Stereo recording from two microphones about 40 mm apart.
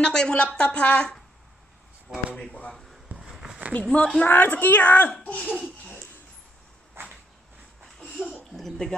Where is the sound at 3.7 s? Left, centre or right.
Left.